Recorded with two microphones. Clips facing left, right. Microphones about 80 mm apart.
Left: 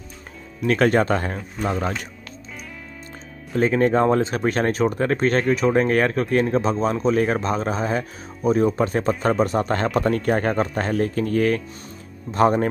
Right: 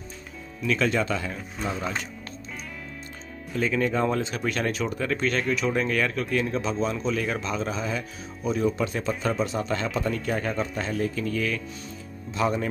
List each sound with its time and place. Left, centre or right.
0.6 s speech: left
3.5 s speech: left